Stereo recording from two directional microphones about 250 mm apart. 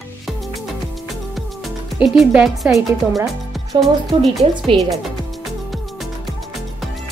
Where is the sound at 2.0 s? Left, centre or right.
Centre.